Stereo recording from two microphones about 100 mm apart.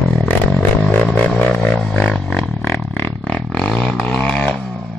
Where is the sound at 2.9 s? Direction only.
20° left (ahead or behind).